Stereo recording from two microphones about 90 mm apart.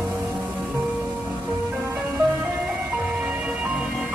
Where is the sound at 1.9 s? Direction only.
30° right (ahead or behind).